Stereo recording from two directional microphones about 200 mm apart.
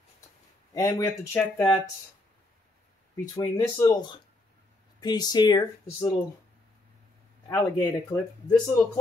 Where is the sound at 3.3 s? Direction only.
20° left (ahead or behind).